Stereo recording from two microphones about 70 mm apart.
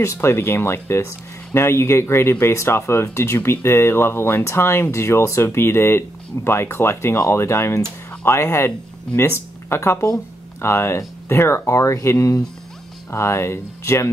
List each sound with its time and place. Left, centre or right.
0.0 s speech: left